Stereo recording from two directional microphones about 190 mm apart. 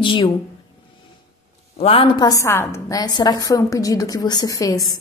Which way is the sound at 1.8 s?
30° left (ahead or behind).